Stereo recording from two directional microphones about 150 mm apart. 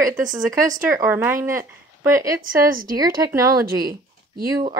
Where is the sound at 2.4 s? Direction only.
70° right (ahead or behind).